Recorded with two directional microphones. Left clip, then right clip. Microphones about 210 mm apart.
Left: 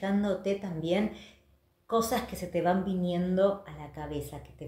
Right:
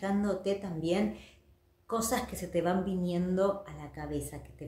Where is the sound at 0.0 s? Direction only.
10° right (ahead or behind).